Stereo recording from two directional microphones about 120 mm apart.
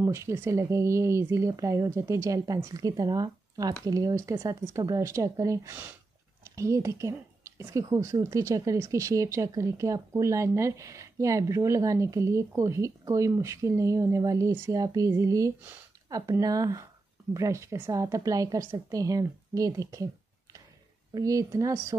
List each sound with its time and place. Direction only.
0.0 s speech: 25° right (ahead or behind)
21.1 s speech: 30° right (ahead or behind)